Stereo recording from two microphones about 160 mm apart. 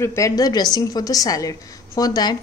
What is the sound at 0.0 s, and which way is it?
A woman's voice, 20° left (ahead or behind).